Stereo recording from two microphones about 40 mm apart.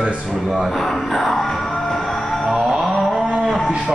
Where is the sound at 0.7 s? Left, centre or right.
Centre.